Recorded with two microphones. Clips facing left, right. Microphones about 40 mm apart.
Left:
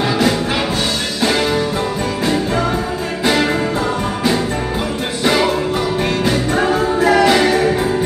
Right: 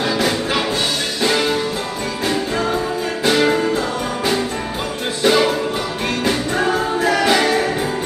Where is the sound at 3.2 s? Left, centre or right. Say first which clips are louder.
Even; centre.